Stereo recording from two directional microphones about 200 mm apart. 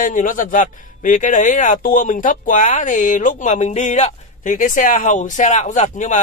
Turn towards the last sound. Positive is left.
turn(degrees=40)  # may be behind; listen again after turning